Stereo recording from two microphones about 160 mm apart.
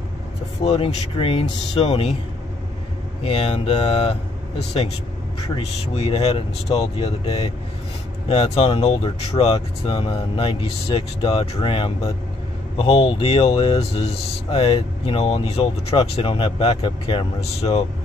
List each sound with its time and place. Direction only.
0.7 s speech: 35° left (ahead or behind)
3.3 s speech: 40° left (ahead or behind)
5.6 s speech: 40° left (ahead or behind)